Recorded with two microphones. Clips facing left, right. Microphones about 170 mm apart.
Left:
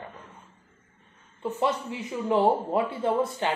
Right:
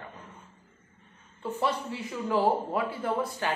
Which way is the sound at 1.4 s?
15° left (ahead or behind).